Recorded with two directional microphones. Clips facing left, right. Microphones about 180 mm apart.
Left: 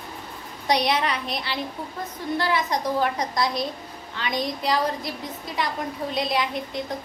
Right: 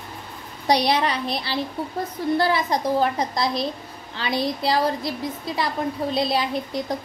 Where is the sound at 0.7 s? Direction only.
35° right (ahead or behind).